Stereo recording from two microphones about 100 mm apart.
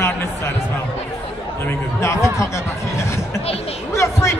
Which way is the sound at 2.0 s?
30° left (ahead or behind).